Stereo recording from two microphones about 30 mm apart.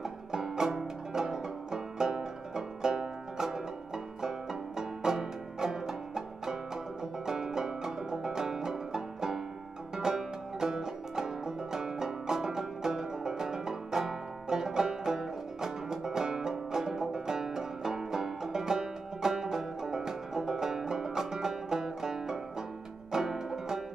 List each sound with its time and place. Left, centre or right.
0.0 s music: centre